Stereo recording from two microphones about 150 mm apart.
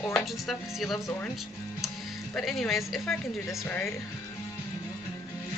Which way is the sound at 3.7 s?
10° left (ahead or behind).